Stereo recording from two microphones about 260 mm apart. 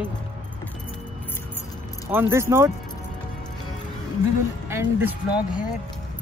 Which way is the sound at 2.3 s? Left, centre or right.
Centre.